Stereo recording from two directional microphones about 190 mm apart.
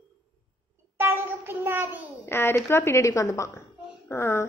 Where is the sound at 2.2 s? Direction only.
10° left (ahead or behind).